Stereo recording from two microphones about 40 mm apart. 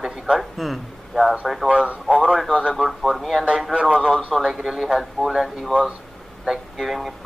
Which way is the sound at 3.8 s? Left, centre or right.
Centre.